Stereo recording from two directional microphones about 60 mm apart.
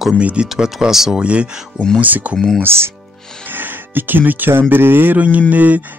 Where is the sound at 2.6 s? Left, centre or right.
Right.